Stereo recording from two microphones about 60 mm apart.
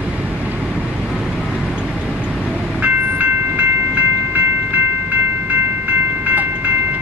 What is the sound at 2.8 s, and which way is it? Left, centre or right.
Train, right.